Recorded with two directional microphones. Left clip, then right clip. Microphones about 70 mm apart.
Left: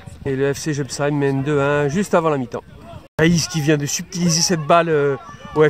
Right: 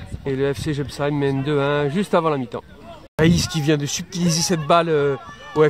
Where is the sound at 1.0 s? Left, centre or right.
Left.